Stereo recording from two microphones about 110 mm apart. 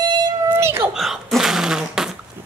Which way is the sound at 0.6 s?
20° right (ahead or behind).